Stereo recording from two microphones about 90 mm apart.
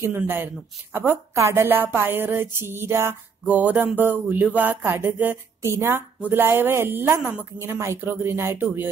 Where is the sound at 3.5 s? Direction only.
20° right (ahead or behind).